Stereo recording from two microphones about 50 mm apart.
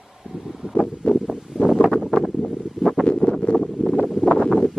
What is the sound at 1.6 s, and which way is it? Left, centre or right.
Wind, centre.